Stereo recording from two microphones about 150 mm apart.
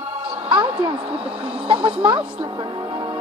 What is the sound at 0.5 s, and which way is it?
Speech, 35° right (ahead or behind).